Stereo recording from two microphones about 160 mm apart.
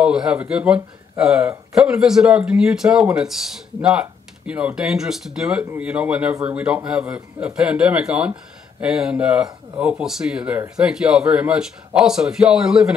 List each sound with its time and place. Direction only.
0.0 s a man's voice: 5° right (ahead or behind)